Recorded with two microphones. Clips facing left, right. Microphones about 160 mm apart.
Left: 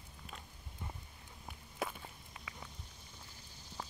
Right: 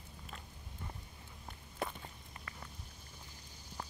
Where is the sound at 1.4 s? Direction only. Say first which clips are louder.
Even; 5° left (ahead or behind).